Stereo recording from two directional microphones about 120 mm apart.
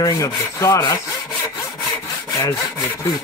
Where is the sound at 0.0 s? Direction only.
30° left (ahead or behind).